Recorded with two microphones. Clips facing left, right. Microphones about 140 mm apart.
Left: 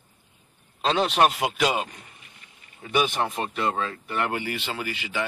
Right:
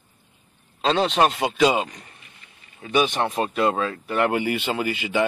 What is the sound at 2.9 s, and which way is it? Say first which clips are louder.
Speech: right 3 dB; 20° right (ahead or behind).